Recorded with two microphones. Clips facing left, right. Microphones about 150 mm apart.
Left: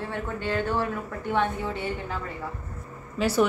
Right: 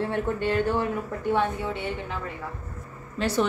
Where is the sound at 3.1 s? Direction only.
5° left (ahead or behind).